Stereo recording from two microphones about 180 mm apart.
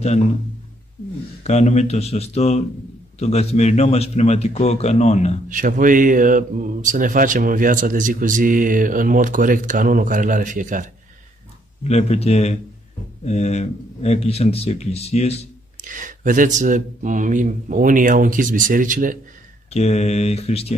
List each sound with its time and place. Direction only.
1.4 s a man's voice: 40° left (ahead or behind)
5.5 s speech: 45° right (ahead or behind)
11.8 s a man's voice: 35° left (ahead or behind)
15.8 s speech: 45° right (ahead or behind)
19.7 s a man's voice: 35° left (ahead or behind)